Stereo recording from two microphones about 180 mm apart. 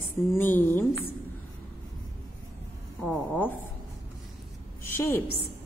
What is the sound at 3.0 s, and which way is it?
Speech, 5° left (ahead or behind).